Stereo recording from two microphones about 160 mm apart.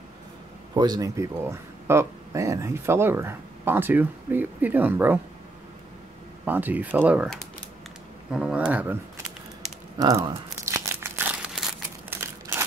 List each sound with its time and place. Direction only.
0.7 s speech: 25° right (ahead or behind)
6.4 s speech: 10° right (ahead or behind)
8.3 s speech: 5° right (ahead or behind)
9.9 s crumpling: 25° right (ahead or behind)